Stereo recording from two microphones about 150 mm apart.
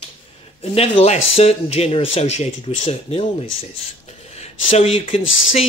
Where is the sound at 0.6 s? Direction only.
40° left (ahead or behind).